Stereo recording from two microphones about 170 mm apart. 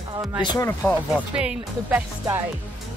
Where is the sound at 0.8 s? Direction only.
10° left (ahead or behind).